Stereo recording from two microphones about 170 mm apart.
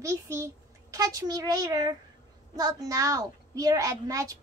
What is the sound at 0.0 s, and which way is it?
A child's voice, 15° right (ahead or behind).